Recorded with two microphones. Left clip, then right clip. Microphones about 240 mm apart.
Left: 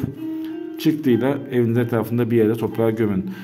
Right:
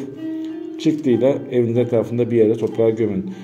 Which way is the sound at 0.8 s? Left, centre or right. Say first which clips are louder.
Right 2 dB; centre.